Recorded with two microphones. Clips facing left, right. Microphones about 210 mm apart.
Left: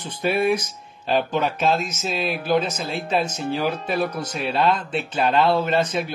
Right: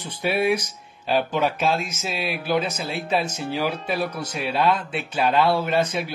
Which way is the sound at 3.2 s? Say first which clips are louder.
Left 2 dB; 45° left (ahead or behind).